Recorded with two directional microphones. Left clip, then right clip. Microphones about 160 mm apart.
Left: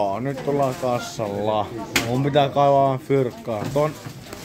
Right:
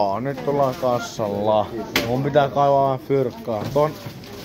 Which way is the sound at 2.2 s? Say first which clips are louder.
Even; 25° left (ahead or behind).